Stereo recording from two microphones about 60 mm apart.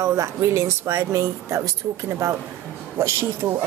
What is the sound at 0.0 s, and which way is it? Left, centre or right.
Speech, right.